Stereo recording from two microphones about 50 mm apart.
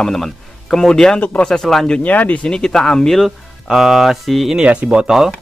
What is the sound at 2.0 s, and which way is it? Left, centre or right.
Speech, left.